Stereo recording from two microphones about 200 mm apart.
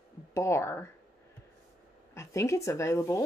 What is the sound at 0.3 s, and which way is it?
Speech, 15° left (ahead or behind).